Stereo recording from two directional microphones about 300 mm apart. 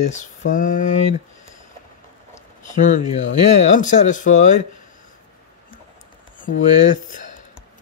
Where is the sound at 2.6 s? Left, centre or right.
Left.